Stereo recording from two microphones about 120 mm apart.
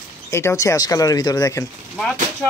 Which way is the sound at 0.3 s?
25° left (ahead or behind).